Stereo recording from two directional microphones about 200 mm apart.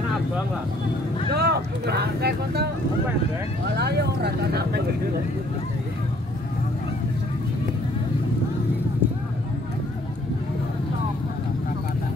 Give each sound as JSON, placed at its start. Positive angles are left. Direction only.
{"t": 1.3, "sound": "speech", "side_deg": -55}
{"t": 3.7, "sound": "speech", "side_deg": -55}